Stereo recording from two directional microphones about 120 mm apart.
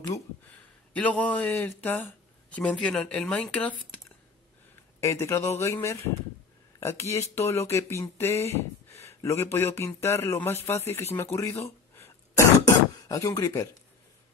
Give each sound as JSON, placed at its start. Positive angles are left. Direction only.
{"t": 0.9, "sound": "speech", "side_deg": 10}
{"t": 5.0, "sound": "speech", "side_deg": 25}
{"t": 11.3, "sound": "throat clearing", "side_deg": 25}